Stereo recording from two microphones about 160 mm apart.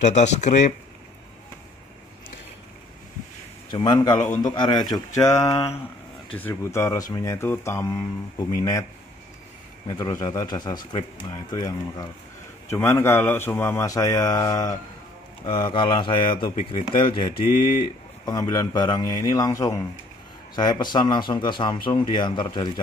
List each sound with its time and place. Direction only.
0.0 s speech: 45° left (ahead or behind)
3.7 s a man's voice: 30° left (ahead or behind)
9.8 s a man's voice: 25° left (ahead or behind)
15.4 s speech: 30° left (ahead or behind)
18.2 s a man's voice: 20° left (ahead or behind)